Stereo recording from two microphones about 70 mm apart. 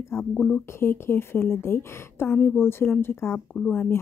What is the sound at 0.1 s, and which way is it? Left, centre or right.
Speech, left.